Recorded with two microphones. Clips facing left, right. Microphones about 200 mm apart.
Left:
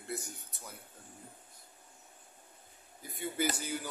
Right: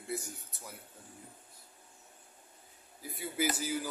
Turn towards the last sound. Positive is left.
turn(degrees=0)  # may be behind; listen again after turning